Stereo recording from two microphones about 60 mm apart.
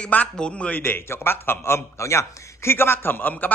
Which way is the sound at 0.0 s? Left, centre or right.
Left.